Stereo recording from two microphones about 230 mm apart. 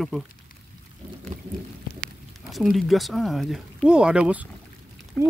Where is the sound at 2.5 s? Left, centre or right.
Centre.